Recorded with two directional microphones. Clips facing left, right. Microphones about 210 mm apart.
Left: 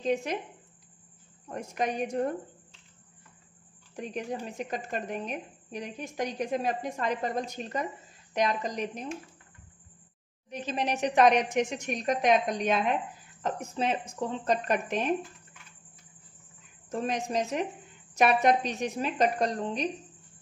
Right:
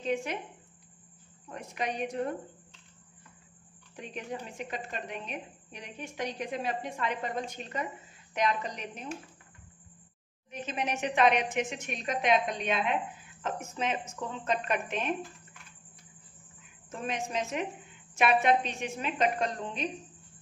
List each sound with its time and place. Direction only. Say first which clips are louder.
0.0 s a woman's voice: left 3 dB; 40° left (ahead or behind)
1.5 s a woman's voice: left 4 dB; 45° left (ahead or behind)
3.9 s a woman's voice: left 4 dB; 40° left (ahead or behind)
10.5 s a woman's voice: left 3 dB; 35° left (ahead or behind)
16.9 s a woman's voice: left 4 dB; 40° left (ahead or behind)